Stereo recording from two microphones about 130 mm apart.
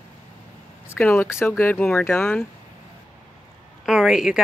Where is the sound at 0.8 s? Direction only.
15° left (ahead or behind).